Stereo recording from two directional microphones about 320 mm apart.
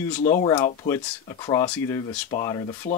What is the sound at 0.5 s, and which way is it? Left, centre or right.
Speech, centre.